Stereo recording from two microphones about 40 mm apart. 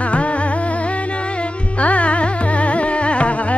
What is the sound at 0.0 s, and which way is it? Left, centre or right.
Music, left.